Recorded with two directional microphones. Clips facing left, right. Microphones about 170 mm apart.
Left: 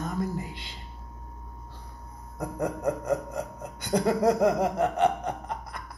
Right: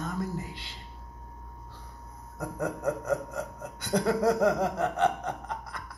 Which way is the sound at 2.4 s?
15° left (ahead or behind).